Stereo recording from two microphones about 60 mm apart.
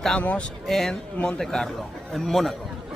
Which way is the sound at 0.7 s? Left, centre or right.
Centre.